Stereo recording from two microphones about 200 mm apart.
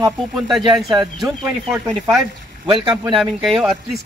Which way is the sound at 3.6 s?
Centre (ahead or behind).